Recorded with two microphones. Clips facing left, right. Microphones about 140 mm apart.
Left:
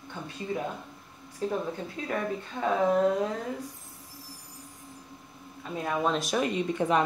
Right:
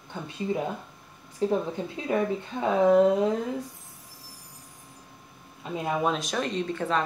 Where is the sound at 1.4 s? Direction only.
25° right (ahead or behind).